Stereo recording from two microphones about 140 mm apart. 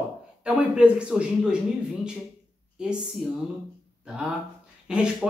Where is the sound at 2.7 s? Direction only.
5° right (ahead or behind).